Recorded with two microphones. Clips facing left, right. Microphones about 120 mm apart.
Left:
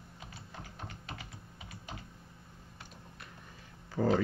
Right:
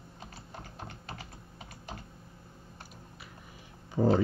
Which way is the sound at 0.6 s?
40° right (ahead or behind).